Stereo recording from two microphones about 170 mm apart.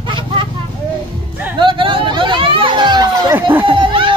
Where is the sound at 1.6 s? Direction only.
30° right (ahead or behind).